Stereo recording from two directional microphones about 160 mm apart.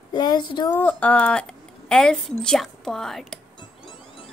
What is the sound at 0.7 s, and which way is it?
Speech, 10° left (ahead or behind).